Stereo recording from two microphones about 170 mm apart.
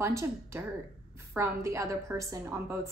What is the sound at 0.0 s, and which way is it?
A woman's voice, 15° right (ahead or behind).